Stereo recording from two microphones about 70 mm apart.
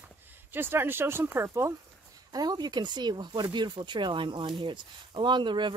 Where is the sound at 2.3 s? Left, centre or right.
Right.